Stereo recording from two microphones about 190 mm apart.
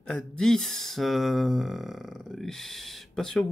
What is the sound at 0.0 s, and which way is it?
Speech, 5° left (ahead or behind).